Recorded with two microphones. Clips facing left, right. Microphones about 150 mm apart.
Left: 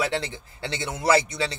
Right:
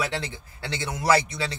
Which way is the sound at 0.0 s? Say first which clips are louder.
Left 3 dB; 25° left (ahead or behind).